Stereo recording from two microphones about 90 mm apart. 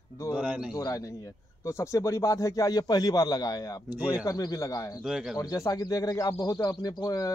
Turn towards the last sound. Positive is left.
turn(degrees=45)  # may be behind; listen again after turning